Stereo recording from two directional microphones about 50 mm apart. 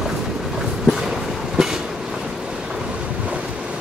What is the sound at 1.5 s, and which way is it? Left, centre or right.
Train, centre.